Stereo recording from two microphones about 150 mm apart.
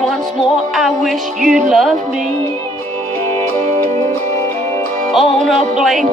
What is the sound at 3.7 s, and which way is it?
Music, 45° right (ahead or behind).